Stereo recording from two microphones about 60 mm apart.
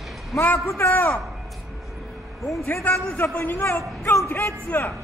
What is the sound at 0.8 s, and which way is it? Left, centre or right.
Speech, left.